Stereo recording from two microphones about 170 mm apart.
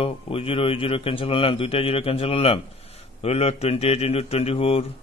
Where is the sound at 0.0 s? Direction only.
35° left (ahead or behind).